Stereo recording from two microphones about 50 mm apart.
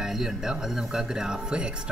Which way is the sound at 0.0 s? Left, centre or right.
Centre.